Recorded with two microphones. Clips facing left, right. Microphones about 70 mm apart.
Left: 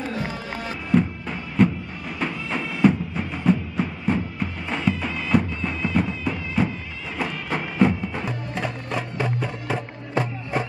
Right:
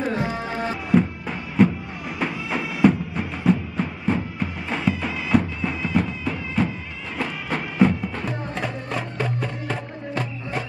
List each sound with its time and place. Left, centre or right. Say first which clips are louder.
0.0 s music: right 4 dB; right
0.9 s music: even; centre